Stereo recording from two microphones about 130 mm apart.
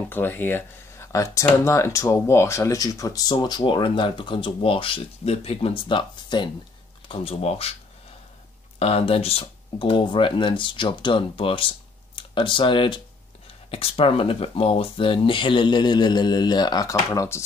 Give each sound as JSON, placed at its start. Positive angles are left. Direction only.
{"t": 0.1, "sound": "speech", "side_deg": 15}
{"t": 7.1, "sound": "speech", "side_deg": 50}
{"t": 8.7, "sound": "speech", "side_deg": 50}